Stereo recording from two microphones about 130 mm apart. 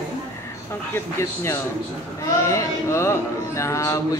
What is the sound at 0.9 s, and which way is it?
Speech, 20° left (ahead or behind).